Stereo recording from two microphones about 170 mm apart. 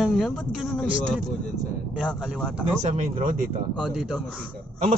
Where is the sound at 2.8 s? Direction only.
45° right (ahead or behind).